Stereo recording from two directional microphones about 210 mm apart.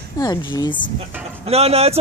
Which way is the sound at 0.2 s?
20° left (ahead or behind).